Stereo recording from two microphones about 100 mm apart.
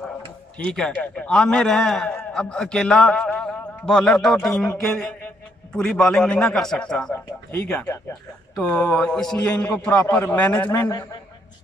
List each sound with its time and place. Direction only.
0.7 s a man's voice: 10° left (ahead or behind)
9.8 s a man's voice: 15° left (ahead or behind)
10.7 s a man's voice: 35° left (ahead or behind)